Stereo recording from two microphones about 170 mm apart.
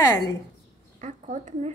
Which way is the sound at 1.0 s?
50° right (ahead or behind).